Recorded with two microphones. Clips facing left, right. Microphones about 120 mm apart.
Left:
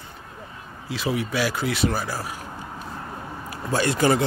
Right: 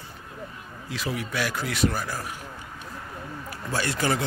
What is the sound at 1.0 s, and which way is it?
Speech, 5° left (ahead or behind).